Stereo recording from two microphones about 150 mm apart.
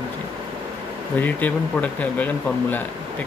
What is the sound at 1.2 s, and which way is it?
Speech, 10° left (ahead or behind).